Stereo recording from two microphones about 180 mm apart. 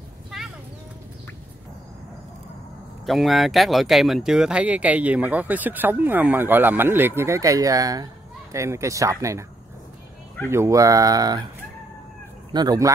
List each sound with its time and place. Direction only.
3.1 s speech: centre (ahead or behind); by 9.5 s 15° right (ahead or behind)
10.5 s speech: 15° right (ahead or behind)
12.5 s speech: 20° right (ahead or behind)